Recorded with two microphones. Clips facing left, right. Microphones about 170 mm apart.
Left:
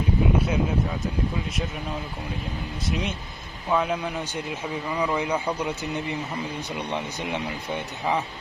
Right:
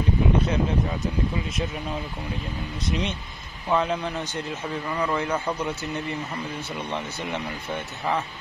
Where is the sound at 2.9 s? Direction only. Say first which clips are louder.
Right 1 dB; 5° left (ahead or behind).